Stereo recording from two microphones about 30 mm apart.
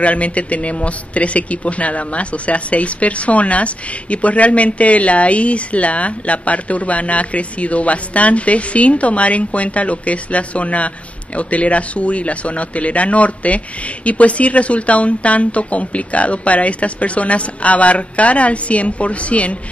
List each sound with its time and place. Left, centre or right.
0.0 s speech: left